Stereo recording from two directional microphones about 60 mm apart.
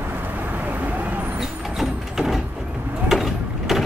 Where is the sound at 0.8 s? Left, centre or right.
Right.